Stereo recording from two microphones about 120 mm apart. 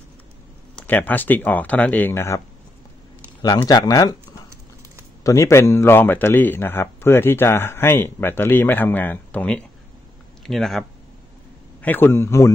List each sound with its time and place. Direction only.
0.7 s speech: 15° left (ahead or behind)
3.4 s speech: 30° left (ahead or behind)
5.2 s a man's voice: 25° left (ahead or behind); by 10.9 s centre (ahead or behind)
11.8 s a man's voice: 15° left (ahead or behind)